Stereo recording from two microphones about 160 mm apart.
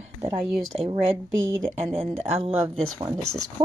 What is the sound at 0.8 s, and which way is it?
Speech, 40° right (ahead or behind).